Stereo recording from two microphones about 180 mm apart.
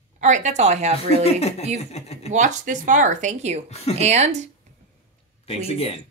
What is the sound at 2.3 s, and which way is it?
Speech, 40° right (ahead or behind).